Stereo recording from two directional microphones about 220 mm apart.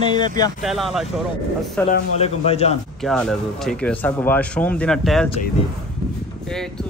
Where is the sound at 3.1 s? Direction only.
Centre (ahead or behind).